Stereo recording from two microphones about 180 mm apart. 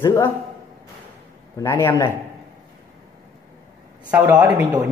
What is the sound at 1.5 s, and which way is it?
Speech, 10° left (ahead or behind).